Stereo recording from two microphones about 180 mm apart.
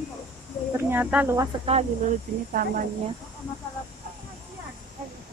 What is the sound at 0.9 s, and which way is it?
Speech, 10° right (ahead or behind).